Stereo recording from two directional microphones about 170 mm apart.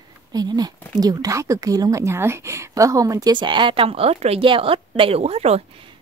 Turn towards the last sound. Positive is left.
turn(degrees=-40)  # may be behind; listen again after turning